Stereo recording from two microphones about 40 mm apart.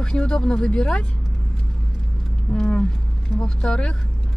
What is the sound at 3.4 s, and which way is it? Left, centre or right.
Speech, centre.